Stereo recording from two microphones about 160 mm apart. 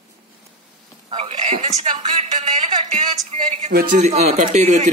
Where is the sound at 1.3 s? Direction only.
45° right (ahead or behind).